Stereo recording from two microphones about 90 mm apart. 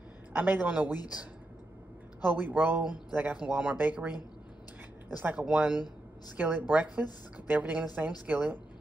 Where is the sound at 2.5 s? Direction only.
20° right (ahead or behind).